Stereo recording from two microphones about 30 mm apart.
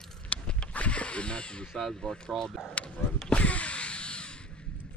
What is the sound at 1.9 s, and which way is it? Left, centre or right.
Speech, left.